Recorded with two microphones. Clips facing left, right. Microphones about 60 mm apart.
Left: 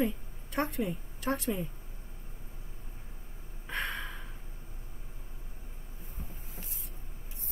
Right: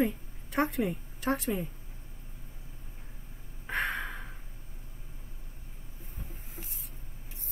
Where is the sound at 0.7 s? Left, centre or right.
Right.